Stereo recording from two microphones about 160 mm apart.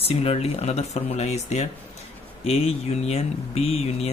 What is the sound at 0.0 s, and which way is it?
Speech, 40° left (ahead or behind).